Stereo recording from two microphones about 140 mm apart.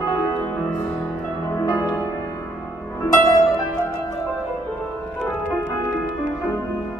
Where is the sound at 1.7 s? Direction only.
30° left (ahead or behind).